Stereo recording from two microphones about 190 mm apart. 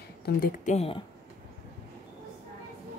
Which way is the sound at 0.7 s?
30° left (ahead or behind).